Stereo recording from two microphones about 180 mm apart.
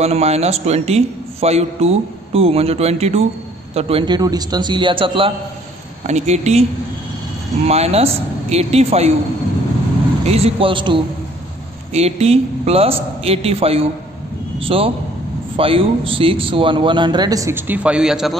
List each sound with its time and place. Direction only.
0.0 s a man's voice: 35° right (ahead or behind)
7.6 s a man's voice: 35° right (ahead or behind)
10.2 s a man's voice: 35° right (ahead or behind); by 18.3 s 5° right (ahead or behind)